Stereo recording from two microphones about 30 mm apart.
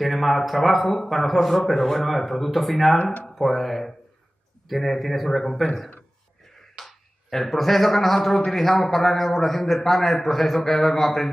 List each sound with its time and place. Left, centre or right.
0.0 s a man's voice: centre
3.0 s speech: left
3.3 s a man's voice: centre
6.8 s finger snapping: centre
7.2 s a man's voice: centre